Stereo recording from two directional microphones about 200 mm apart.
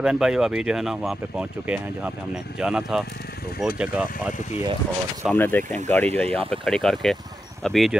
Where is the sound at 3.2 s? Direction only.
50° left (ahead or behind).